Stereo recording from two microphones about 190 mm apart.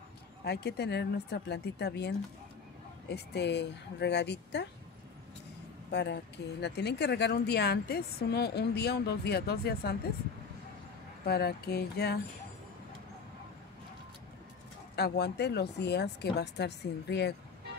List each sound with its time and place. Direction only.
0.5 s a woman's voice: 60° left (ahead or behind)
5.9 s a woman's voice: 65° left (ahead or behind)
11.2 s a woman's voice: 60° left (ahead or behind)
15.0 s a woman's voice: 60° left (ahead or behind)